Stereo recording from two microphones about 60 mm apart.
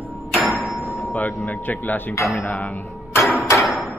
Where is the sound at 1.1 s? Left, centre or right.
Left.